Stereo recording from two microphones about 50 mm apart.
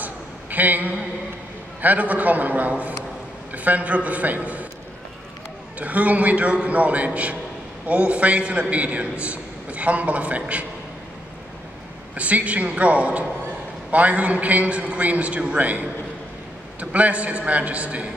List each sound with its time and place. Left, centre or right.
0.0 s a sound: right
1.8 s a man's voice: right
5.8 s a man's voice: right
12.2 s a man's voice: right